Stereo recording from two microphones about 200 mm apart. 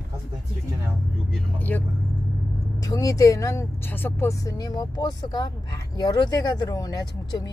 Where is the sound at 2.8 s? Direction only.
15° left (ahead or behind).